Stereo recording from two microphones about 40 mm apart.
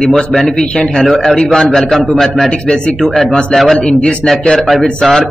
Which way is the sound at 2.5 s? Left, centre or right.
Left.